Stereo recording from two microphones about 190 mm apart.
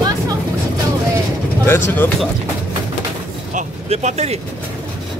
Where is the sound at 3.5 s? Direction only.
40° right (ahead or behind).